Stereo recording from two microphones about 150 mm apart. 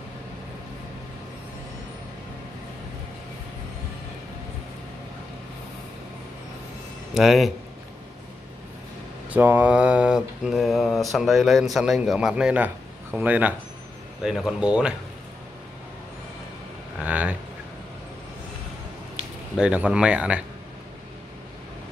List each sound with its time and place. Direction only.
7.2 s mantra: centre (ahead or behind)
9.3 s mantra: 10° right (ahead or behind)
17.0 s a sound: 10° right (ahead or behind)
19.6 s speech: 10° right (ahead or behind)